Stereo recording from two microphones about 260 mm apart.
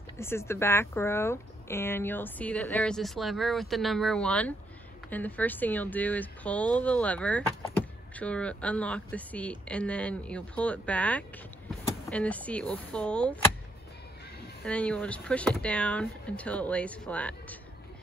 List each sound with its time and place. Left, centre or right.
0.2 s speech: centre
14.6 s speech: centre